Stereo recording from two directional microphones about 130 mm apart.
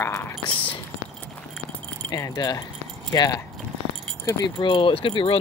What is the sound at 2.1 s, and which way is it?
Speech, 30° left (ahead or behind).